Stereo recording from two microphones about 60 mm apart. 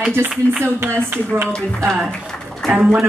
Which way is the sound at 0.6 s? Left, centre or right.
Right.